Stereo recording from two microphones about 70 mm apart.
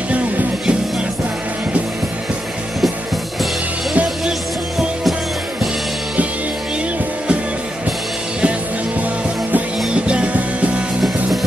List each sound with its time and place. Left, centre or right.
0.1 s music: right
9.9 s music: centre